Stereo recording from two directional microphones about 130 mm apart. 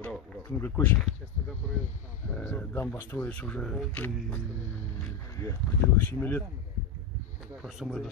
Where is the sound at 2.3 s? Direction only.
10° left (ahead or behind).